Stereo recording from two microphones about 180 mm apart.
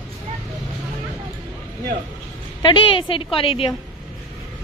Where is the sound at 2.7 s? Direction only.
30° left (ahead or behind).